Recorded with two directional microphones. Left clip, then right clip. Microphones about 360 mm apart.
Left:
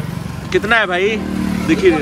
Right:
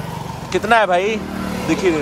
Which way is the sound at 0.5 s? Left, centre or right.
Centre.